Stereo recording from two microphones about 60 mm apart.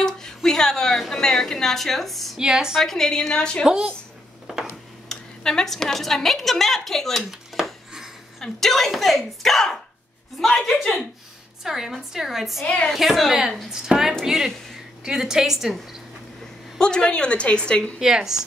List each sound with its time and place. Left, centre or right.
0.0 s a sound: centre
1.0 s speech: centre
2.3 s a woman's voice: centre
2.8 s a woman's voice: centre
3.6 s a woman's voice: centre
4.5 s a sound: centre
5.0 s a woman's voice: centre
8.4 s speech: centre
11.6 s speech: centre
12.6 s a woman's voice: centre
12.9 s a woman's voice: centre
16.7 s a woman's voice: centre
17.9 s a woman's voice: centre